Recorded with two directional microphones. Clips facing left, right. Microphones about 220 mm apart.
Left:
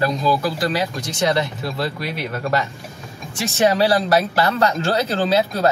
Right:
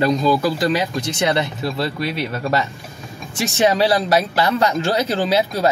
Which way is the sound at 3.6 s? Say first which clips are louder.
Even; 20° right (ahead or behind).